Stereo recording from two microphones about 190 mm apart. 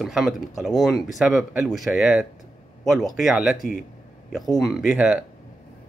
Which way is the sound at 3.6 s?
45° left (ahead or behind).